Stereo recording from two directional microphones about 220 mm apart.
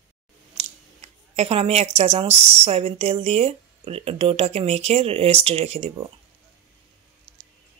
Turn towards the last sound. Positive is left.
turn(degrees=-25)  # may be behind; listen again after turning